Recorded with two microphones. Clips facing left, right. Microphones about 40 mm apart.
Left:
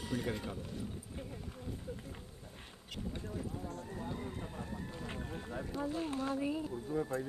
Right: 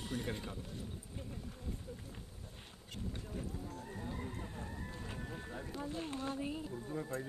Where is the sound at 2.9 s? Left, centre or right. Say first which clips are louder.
Left 2 dB; left.